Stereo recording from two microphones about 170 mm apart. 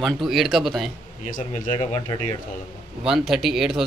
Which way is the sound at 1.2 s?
50° left (ahead or behind).